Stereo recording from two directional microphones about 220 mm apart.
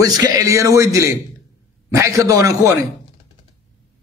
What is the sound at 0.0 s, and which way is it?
A man's voice, 15° right (ahead or behind).